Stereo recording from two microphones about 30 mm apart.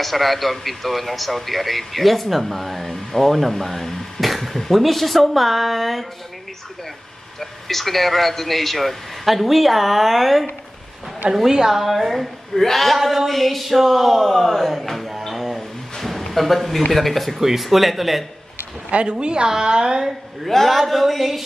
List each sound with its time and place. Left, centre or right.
0.0 s speech: centre
7.3 s speech: centre
11.4 s speech: centre
11.7 s speech: centre
12.5 s speech: centre
15.2 s a sound: centre
16.3 s speech: centre
17.4 s speech: centre
18.9 s a woman's voice: right
20.4 s speech: centre